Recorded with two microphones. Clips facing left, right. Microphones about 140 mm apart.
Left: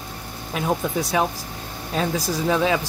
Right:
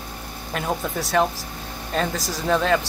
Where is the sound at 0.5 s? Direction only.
5° left (ahead or behind).